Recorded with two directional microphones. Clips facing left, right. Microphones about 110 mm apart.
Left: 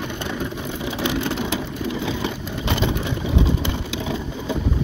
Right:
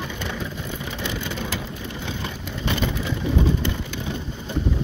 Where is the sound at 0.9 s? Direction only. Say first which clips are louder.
Left 8 dB; 75° left (ahead or behind).